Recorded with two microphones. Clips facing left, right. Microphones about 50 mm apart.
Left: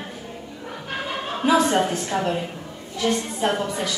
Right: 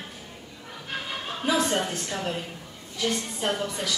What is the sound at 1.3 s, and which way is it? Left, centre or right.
A woman's voice, left.